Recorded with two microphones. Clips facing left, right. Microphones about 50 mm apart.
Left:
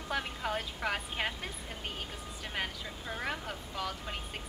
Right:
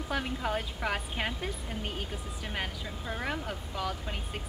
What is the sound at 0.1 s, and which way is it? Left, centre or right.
A woman's voice, centre.